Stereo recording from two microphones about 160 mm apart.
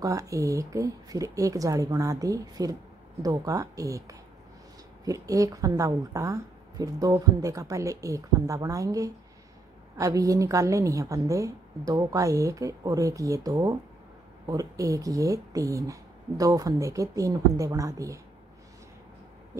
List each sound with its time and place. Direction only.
0.0 s a woman's voice: 20° right (ahead or behind)